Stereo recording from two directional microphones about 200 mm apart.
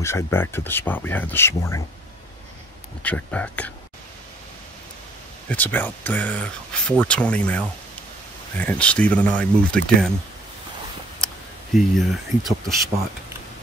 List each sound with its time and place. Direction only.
0.0 s speech: 10° left (ahead or behind)
3.0 s speech: 5° left (ahead or behind)
5.5 s speech: 10° left (ahead or behind)
11.7 s speech: centre (ahead or behind)